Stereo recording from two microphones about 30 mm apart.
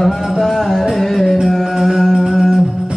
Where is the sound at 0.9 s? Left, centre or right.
Centre.